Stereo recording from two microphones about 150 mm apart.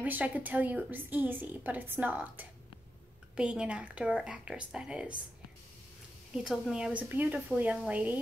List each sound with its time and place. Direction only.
0.0 s a woman's voice: 10° right (ahead or behind)
6.3 s a woman's voice: 5° right (ahead or behind)